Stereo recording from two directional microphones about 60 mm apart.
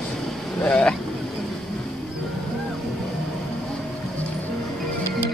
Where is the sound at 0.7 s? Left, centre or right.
Centre.